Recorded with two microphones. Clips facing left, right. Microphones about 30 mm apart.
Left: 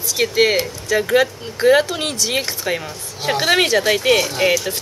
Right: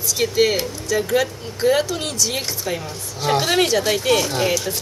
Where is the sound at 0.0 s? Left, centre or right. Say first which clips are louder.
Left 2 dB; centre.